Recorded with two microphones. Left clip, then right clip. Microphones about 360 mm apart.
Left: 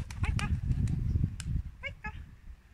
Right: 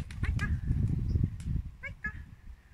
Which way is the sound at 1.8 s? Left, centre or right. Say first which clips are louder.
Right 2 dB; centre.